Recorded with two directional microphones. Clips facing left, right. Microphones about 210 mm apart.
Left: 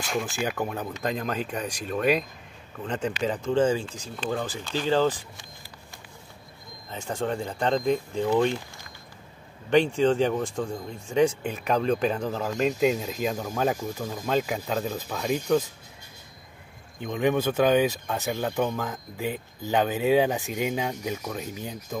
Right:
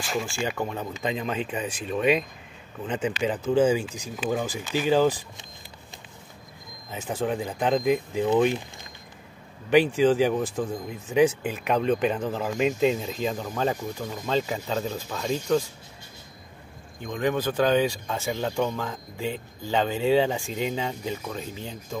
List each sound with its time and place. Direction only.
0.0 s speech: centre (ahead or behind)
6.9 s speech: 5° right (ahead or behind)
9.7 s speech: 5° right (ahead or behind)
17.0 s speech: 15° left (ahead or behind)